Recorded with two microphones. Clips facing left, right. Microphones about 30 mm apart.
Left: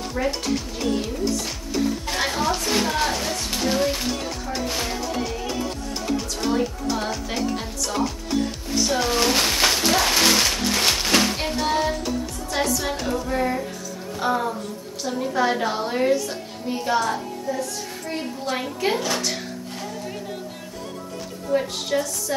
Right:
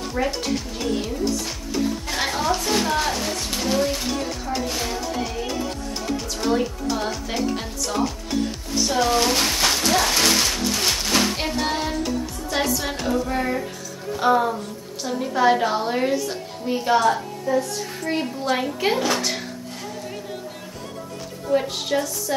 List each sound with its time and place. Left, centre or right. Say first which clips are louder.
0.0 s speech: right 1 dB; centre
6.1 s speech: right 1 dB; centre
9.7 s music: even; centre
10.7 s a sound: left 2 dB; left
11.3 s a woman's voice: left 1 dB; centre
17.5 s a woman's voice: right 6 dB; right
18.5 s a woman's voice: right 2 dB; centre
21.5 s a woman's voice: right 1 dB; centre